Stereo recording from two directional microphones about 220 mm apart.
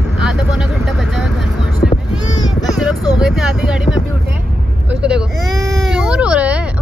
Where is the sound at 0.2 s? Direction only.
Centre (ahead or behind).